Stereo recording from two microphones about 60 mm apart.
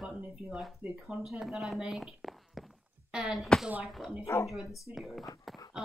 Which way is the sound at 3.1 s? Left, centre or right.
Centre.